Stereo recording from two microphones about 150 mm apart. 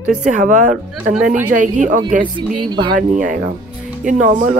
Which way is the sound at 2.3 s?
30° right (ahead or behind).